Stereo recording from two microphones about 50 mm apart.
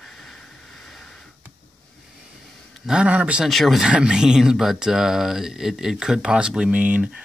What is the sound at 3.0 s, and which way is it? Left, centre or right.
Speech, right.